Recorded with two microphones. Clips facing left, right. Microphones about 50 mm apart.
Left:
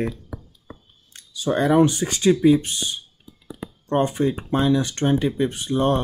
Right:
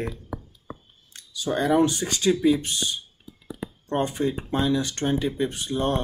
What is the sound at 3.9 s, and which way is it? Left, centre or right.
Speech, left.